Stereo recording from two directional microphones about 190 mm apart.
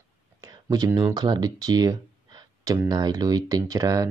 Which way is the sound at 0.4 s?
20° right (ahead or behind).